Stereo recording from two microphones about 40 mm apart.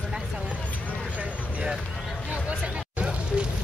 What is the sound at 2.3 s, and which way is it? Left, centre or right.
Hubbub, right.